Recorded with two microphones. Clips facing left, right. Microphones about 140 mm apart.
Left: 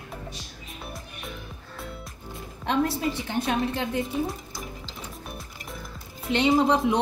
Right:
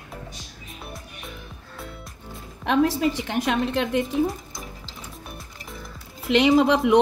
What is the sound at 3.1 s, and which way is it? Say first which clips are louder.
Speech: right 2 dB; 90° right.